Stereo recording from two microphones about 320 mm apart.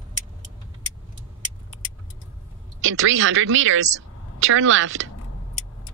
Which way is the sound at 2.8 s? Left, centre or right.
Right.